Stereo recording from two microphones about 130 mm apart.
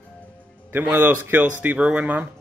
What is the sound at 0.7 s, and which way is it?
Speech, 15° right (ahead or behind).